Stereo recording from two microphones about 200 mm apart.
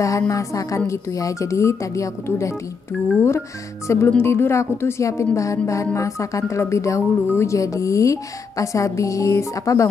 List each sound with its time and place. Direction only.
0.0 s speech: 15° left (ahead or behind)